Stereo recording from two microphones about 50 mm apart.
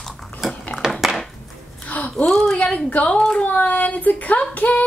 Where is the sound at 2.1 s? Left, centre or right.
Centre.